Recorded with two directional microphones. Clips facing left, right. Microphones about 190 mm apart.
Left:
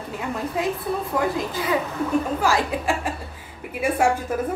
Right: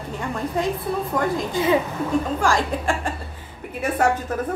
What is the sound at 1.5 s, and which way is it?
Speech, 25° right (ahead or behind).